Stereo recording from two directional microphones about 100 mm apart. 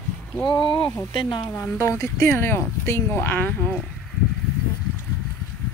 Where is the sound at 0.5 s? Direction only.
50° left (ahead or behind).